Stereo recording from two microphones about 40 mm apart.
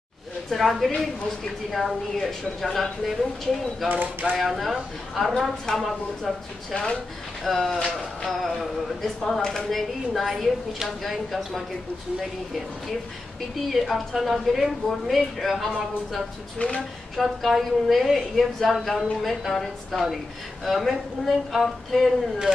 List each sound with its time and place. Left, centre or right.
0.5 s a woman's voice: centre
3.9 s speech: right
4.4 s a woman's voice: centre
6.7 s speech: left
7.4 s a woman's voice: centre
13.7 s a woman's voice: centre
16.5 s speech: left
17.2 s a woman's voice: centre